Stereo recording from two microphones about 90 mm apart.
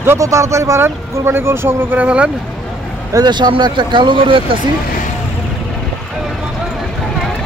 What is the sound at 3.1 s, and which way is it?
Speech, 55° right (ahead or behind).